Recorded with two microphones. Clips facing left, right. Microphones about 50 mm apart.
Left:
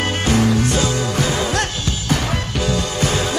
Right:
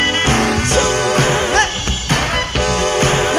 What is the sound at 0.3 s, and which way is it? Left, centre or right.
Music, right.